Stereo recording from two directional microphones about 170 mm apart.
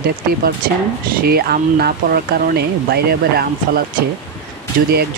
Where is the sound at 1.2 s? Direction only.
65° right (ahead or behind).